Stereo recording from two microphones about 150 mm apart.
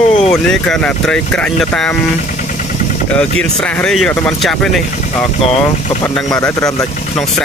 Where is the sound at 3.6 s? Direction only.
5° left (ahead or behind).